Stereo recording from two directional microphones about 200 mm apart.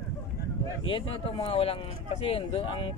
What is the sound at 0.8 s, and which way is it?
Speech, 25° left (ahead or behind).